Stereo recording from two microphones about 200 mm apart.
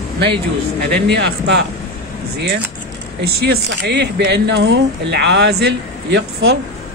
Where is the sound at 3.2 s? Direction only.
50° right (ahead or behind).